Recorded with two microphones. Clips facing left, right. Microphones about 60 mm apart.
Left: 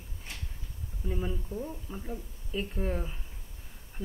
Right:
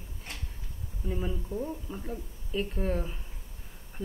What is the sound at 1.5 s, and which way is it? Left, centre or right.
A woman's voice, centre.